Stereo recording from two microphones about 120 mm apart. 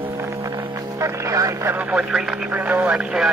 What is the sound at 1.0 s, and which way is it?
Music, 25° right (ahead or behind).